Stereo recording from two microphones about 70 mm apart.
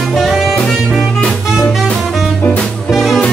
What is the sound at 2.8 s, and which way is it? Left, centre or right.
Music, centre.